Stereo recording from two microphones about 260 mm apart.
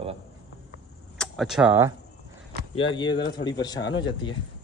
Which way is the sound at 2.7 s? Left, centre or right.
Centre.